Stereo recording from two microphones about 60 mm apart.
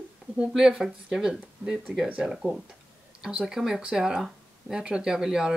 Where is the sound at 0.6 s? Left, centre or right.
Centre.